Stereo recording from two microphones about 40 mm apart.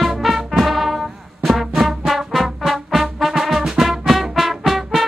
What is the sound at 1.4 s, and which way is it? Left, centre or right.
Trombone, centre.